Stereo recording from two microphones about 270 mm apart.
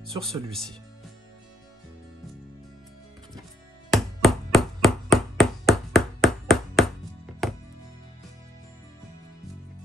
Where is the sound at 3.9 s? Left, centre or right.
Centre.